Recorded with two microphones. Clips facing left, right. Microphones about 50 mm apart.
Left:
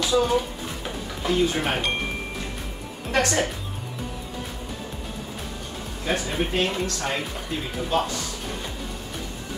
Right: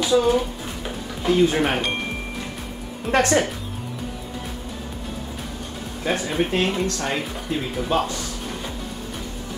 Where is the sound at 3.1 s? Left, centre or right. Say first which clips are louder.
Right 4 dB; right.